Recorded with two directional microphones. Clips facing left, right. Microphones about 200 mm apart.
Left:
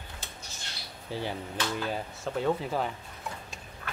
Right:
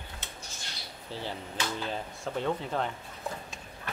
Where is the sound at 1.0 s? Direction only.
15° left (ahead or behind).